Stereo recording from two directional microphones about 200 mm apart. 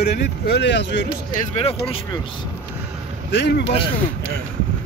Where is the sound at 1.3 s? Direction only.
30° left (ahead or behind).